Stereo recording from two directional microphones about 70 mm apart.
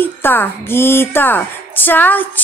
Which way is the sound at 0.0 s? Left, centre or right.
Left.